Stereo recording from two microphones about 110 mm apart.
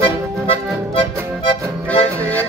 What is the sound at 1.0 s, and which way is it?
Music, 60° left (ahead or behind).